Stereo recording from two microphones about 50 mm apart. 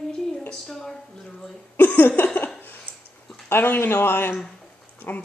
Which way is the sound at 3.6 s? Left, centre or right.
Left.